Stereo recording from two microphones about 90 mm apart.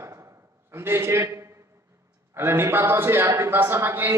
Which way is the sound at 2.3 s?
30° right (ahead or behind).